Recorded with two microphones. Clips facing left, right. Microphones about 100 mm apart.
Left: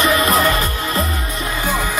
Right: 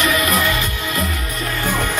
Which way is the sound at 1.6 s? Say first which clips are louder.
Even; 10° left (ahead or behind).